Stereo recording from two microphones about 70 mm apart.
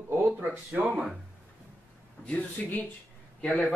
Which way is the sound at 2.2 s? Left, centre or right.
Centre.